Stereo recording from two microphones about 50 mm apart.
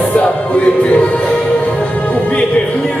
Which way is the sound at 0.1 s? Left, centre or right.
Left.